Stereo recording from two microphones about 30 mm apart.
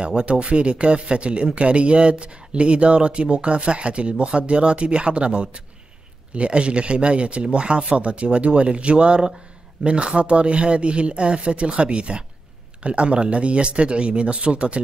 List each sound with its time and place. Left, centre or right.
0.0 s speech: right